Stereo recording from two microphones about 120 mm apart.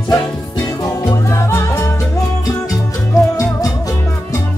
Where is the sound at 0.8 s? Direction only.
30° left (ahead or behind).